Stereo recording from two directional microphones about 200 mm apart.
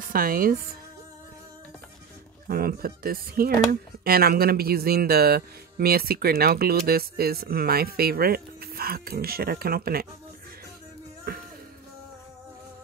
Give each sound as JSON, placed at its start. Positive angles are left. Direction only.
{"t": 0.0, "sound": "speech", "side_deg": -45}
{"t": 2.4, "sound": "speech", "side_deg": -50}